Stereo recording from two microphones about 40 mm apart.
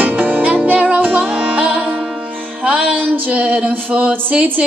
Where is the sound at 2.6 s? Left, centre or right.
Right.